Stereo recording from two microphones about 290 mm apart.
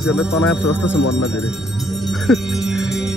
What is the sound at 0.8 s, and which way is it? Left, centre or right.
Speech, left.